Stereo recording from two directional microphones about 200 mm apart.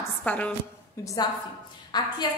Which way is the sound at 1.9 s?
20° left (ahead or behind).